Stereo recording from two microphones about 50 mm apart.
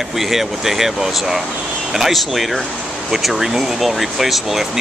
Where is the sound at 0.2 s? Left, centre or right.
Centre.